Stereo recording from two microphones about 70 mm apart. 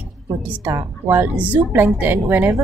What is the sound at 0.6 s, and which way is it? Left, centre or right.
Music, right.